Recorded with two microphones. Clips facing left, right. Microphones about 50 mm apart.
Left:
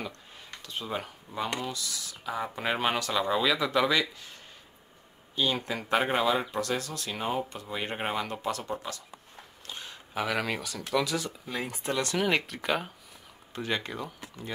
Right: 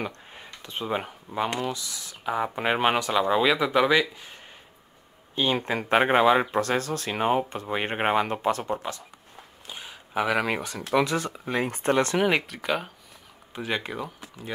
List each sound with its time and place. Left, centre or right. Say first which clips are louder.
0.0 s speech: right 5 dB; right
5.3 s speech: right 4 dB; right
9.7 s a sound: right 1 dB; centre
10.6 s speech: right 5 dB; right
12.3 s speech: right 3 dB; centre